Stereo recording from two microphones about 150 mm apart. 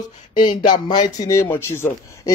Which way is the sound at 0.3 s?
30° left (ahead or behind).